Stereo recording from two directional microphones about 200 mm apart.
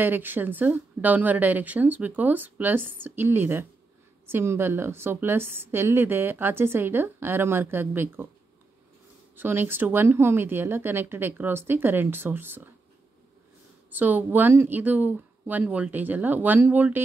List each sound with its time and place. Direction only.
0.0 s a woman's voice: 10° right (ahead or behind)
9.4 s a woman's voice: 10° right (ahead or behind)
13.8 s a woman's voice: 10° right (ahead or behind)